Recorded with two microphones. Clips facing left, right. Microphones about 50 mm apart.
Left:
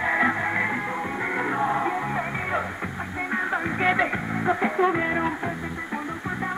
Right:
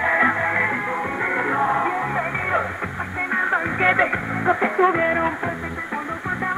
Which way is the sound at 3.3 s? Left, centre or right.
Centre.